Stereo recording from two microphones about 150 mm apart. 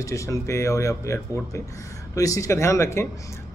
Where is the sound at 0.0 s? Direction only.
20° left (ahead or behind).